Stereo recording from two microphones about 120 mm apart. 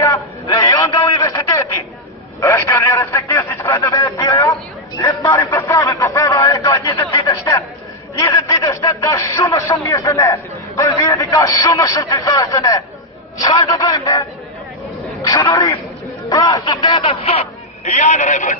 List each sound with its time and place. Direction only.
0.0 s a sound: 30° left (ahead or behind)
3.7 s speech: 30° left (ahead or behind)
8.2 s a sound: 30° left (ahead or behind)
9.1 s a man's voice: 25° left (ahead or behind)
15.2 s a man's voice: 30° left (ahead or behind)
17.1 s speech: 60° left (ahead or behind); by 18.6 s 90° left